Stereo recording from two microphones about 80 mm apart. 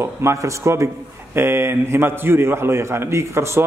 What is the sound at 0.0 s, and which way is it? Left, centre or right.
A man's voice, right.